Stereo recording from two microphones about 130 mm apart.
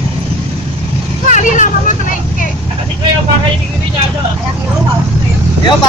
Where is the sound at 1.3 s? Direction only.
80° left.